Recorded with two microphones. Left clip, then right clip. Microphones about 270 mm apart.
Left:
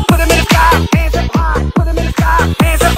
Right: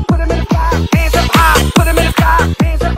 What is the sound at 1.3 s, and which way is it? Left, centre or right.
Music, right.